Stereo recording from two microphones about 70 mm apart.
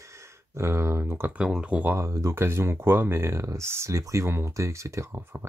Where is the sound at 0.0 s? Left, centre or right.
Right.